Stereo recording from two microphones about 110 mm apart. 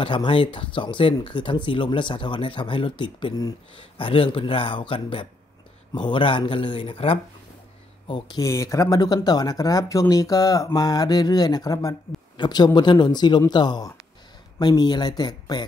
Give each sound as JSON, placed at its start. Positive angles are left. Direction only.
{"t": 0.0, "sound": "speech", "side_deg": 50}
{"t": 3.7, "sound": "speech", "side_deg": 55}
{"t": 8.1, "sound": "speech", "side_deg": 45}
{"t": 8.5, "sound": "speech", "side_deg": 30}